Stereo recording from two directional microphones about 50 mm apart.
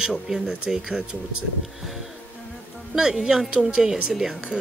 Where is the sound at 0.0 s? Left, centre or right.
Centre.